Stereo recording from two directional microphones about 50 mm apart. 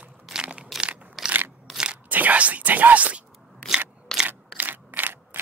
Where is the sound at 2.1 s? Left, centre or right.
Right.